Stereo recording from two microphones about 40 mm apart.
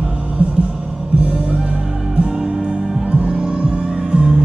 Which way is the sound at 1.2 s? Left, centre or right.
Right.